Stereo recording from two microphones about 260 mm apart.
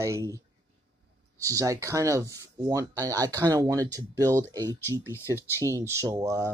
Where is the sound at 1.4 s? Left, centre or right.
Centre.